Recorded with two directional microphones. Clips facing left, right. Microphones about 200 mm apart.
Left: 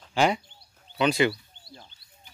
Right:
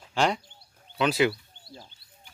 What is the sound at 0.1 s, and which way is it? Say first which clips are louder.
Speech: left 2 dB; 5° left (ahead or behind).